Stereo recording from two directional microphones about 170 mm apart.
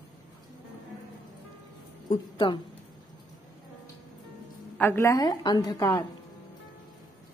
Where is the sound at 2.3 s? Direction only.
30° left (ahead or behind).